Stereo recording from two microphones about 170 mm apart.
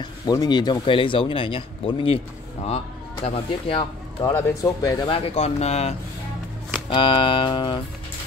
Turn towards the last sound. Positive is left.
turn(degrees=25)  # may be behind; listen again after turning